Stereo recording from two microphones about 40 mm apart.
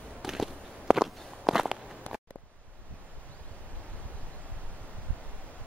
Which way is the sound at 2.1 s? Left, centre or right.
Left.